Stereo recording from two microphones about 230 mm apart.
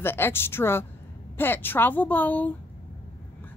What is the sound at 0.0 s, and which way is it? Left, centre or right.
A woman's voice, centre.